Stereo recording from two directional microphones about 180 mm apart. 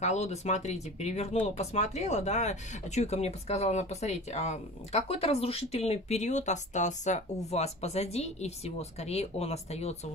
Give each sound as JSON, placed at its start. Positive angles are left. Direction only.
{"t": 0.0, "sound": "speech", "side_deg": 40}